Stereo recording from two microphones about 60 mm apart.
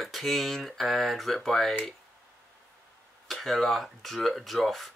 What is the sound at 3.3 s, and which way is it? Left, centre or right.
Speech, centre.